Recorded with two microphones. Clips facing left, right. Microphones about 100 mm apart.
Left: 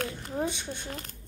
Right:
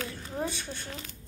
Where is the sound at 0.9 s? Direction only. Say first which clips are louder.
Left 2 dB; 50° left (ahead or behind).